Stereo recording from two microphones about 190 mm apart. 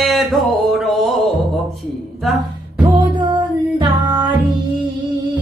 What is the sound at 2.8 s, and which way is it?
Music, 25° right (ahead or behind).